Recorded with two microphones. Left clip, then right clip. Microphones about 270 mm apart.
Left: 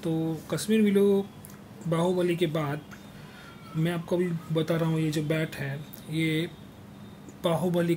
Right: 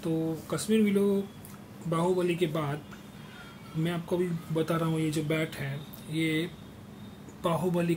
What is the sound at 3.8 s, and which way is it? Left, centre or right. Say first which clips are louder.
Speech: left 2 dB; left.